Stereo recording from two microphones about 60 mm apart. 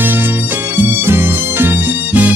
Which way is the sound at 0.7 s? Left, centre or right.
Right.